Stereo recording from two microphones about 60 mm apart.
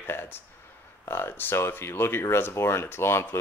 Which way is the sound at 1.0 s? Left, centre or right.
Left.